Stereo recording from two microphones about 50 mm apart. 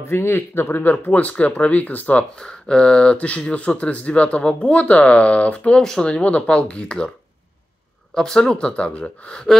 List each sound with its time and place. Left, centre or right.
0.0 s speech: left
1.1 s speech: left
2.3 s speech: centre
5.8 s speech: centre
8.1 s speech: centre